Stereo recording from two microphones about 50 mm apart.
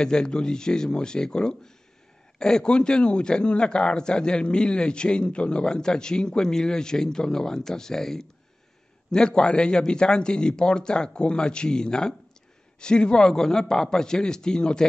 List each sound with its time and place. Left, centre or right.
0.0 s a man's voice: centre